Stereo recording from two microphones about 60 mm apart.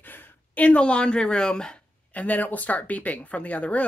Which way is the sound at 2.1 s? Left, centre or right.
Left.